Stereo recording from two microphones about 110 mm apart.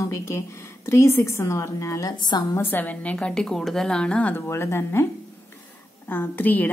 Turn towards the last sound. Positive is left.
turn(degrees=15)  # may be behind; listen again after turning